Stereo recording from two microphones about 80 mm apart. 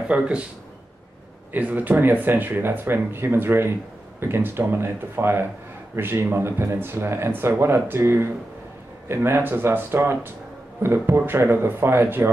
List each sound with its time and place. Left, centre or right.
0.1 s a man's voice: centre
1.5 s speech: right